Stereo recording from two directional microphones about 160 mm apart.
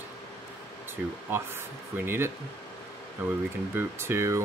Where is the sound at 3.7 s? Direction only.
15° right (ahead or behind).